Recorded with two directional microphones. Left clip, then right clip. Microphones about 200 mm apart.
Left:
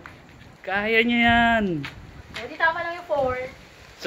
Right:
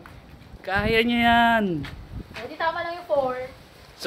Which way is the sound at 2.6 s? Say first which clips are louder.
Left 3 dB; 15° right (ahead or behind).